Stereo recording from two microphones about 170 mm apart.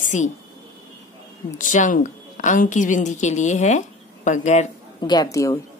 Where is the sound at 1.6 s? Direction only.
50° left (ahead or behind).